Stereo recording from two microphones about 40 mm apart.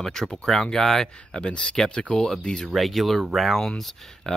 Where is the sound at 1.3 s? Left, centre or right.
Left.